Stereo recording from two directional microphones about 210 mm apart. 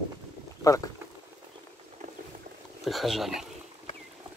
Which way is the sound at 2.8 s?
Centre (ahead or behind).